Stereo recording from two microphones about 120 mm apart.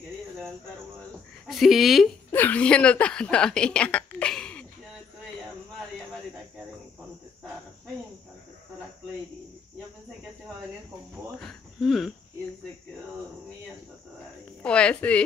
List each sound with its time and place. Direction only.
1.5 s speech: centre (ahead or behind)
2.3 s a woman's voice: 15° left (ahead or behind)
11.3 s cricket: centre (ahead or behind)
14.6 s a woman's voice: 10° left (ahead or behind)